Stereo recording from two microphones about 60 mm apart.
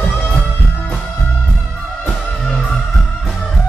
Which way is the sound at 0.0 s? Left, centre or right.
Left.